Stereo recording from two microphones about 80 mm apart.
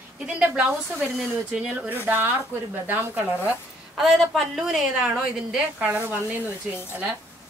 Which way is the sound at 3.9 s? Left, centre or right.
Centre.